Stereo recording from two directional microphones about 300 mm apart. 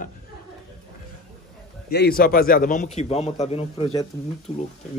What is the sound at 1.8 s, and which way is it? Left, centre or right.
A man's voice, left.